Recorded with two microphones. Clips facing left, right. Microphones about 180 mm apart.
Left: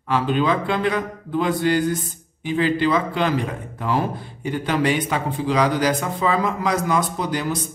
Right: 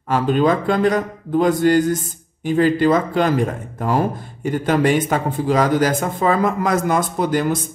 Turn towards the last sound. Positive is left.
turn(degrees=-50)  # may be behind; listen again after turning